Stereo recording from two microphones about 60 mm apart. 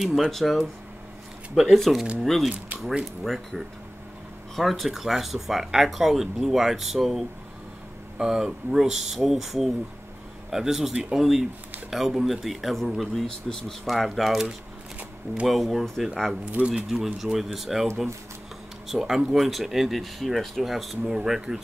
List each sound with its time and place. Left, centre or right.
0.0 s speech: centre
4.6 s speech: centre
16.5 s speech: centre
18.9 s speech: centre